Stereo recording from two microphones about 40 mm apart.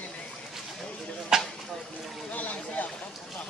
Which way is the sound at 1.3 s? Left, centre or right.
Centre.